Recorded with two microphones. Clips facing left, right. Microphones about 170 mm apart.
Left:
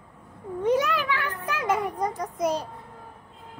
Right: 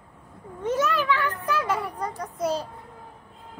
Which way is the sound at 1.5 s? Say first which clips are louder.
Left 3 dB; 15° left (ahead or behind).